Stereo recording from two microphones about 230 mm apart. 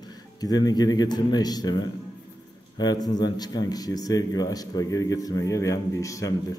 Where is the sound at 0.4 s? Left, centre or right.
Centre.